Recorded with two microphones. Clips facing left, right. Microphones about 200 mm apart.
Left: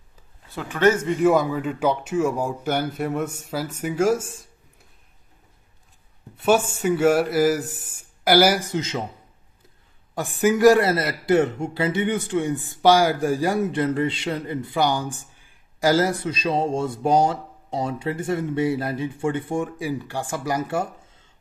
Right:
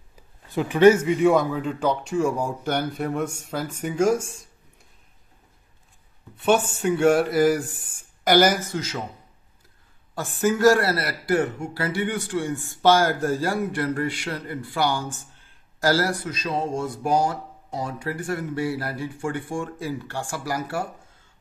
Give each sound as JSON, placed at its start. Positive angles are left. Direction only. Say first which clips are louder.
{"t": 0.5, "sound": "speech", "louder": "right 4 dB", "side_deg": -15}
{"t": 6.4, "sound": "speech", "louder": "left 1 dB", "side_deg": 5}
{"t": 10.4, "sound": "a man's voice", "louder": "left 3 dB", "side_deg": 15}